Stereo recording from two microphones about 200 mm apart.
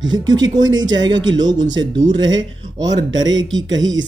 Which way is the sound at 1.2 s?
70° right (ahead or behind).